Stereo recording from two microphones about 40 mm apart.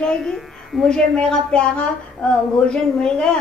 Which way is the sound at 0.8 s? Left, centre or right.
Left.